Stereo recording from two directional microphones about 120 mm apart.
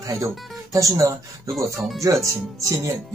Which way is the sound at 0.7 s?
25° right (ahead or behind).